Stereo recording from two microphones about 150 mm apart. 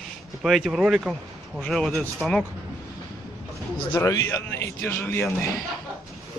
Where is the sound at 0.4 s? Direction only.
Centre (ahead or behind).